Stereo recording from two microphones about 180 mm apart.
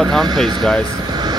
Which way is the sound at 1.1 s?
25° right (ahead or behind).